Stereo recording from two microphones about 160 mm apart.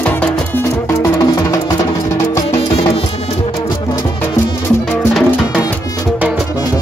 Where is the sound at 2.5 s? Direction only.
40° left (ahead or behind).